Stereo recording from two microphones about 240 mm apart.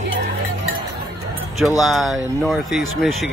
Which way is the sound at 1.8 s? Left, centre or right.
Centre.